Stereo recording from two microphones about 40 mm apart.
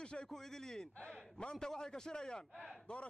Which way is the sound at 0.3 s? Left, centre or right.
Centre.